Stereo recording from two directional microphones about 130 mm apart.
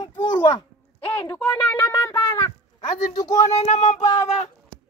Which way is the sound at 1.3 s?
10° left (ahead or behind).